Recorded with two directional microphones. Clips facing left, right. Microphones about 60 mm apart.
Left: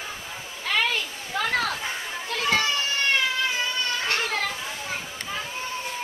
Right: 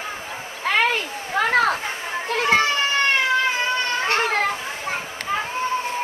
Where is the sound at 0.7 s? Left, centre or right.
Right.